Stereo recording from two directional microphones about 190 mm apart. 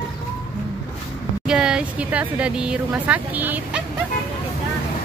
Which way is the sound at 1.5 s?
5° right (ahead or behind).